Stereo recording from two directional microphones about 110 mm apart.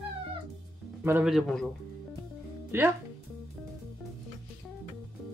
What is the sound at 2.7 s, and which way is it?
Speech, 20° right (ahead or behind).